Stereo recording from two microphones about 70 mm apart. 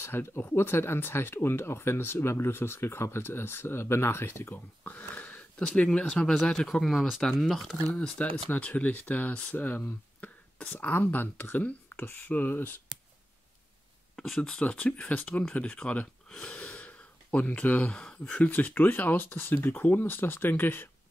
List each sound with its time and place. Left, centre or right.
0.0 s speech: left
6.0 s speech: centre
7.9 s speech: centre; by 12.7 s left
14.1 s speech: centre
14.6 s speech: centre
18.5 s speech: left